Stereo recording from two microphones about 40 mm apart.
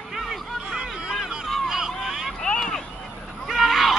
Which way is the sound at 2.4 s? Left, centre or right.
Left.